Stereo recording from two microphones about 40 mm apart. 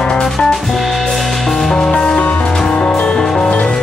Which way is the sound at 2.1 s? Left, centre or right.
Left.